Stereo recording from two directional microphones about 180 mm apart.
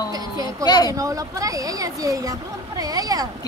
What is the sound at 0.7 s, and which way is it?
Speech, 20° left (ahead or behind).